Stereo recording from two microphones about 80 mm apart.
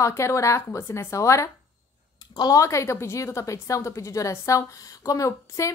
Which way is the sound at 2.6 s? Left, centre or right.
Left.